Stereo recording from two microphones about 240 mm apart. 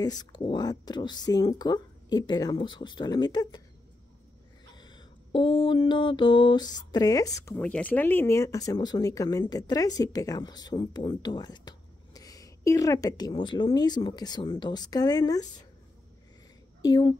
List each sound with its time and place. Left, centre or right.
0.0 s mantra: centre
4.7 s mantra: centre
16.8 s mantra: centre